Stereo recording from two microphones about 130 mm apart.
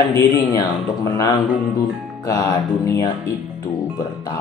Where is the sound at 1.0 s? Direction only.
25° left (ahead or behind).